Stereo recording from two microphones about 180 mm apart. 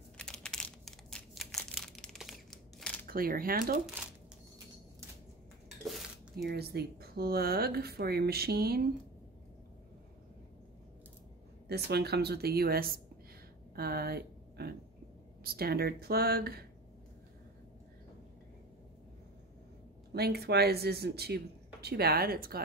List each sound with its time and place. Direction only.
0.2 s crumpling: 5° left (ahead or behind)
3.1 s speech: 55° right (ahead or behind)
6.4 s speech: 60° right (ahead or behind)
11.7 s speech: 65° right (ahead or behind)
20.2 s speech: 65° right (ahead or behind)